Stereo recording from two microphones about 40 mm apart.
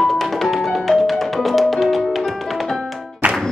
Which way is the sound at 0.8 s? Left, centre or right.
Centre.